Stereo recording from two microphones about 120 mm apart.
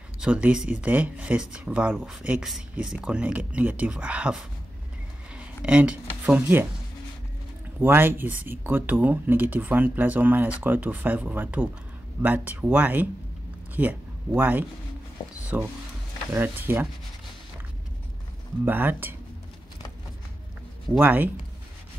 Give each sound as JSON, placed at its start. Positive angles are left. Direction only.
{"t": 0.2, "sound": "speech", "side_deg": -10}
{"t": 7.8, "sound": "speech", "side_deg": -20}
{"t": 18.7, "sound": "speech", "side_deg": -15}
{"t": 21.0, "sound": "speech", "side_deg": -15}